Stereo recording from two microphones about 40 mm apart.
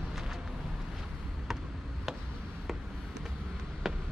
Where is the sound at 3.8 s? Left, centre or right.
Centre.